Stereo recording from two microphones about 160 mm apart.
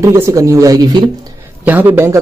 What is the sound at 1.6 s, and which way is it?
Speech, 10° right (ahead or behind).